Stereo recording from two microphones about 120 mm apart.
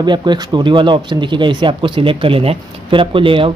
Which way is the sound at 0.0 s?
40° right (ahead or behind).